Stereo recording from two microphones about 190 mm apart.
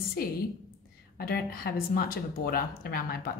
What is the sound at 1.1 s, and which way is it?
Speech, 55° left (ahead or behind).